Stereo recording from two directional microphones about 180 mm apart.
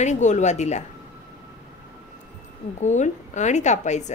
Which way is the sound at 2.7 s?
40° left (ahead or behind).